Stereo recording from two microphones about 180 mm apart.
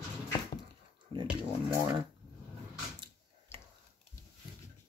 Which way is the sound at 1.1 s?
25° right (ahead or behind).